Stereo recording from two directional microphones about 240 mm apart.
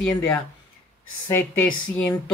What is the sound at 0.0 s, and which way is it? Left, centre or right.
Speech, centre.